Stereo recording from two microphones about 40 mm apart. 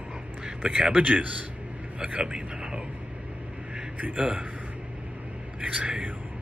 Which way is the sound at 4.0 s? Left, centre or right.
Right.